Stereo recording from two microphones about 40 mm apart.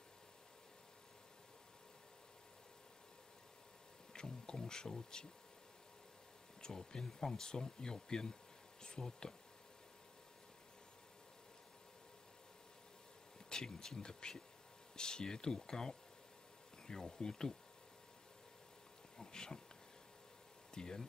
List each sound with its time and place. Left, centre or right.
4.1 s speech: centre
6.6 s speech: centre
13.5 s speech: centre
19.1 s speech: centre
20.7 s speech: centre